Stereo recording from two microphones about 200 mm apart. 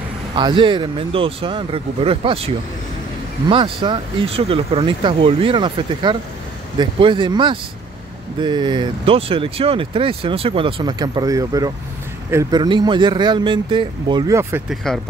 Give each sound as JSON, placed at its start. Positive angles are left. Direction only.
{"t": 0.3, "sound": "speech", "side_deg": -25}
{"t": 14.8, "sound": "speech", "side_deg": 5}